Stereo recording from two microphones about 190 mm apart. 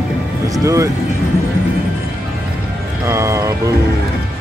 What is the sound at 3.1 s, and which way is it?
Music, 15° right (ahead or behind).